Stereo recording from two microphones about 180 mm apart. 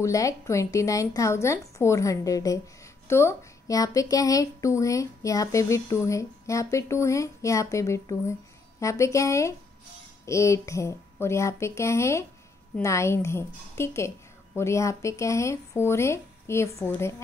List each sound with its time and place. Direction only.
0.0 s speech: 20° left (ahead or behind)